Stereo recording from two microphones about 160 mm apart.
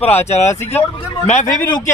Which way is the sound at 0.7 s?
45° left (ahead or behind).